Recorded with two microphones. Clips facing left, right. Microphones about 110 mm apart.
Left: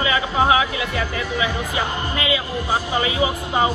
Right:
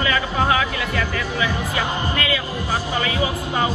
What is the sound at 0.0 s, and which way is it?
Speech, 20° left (ahead or behind).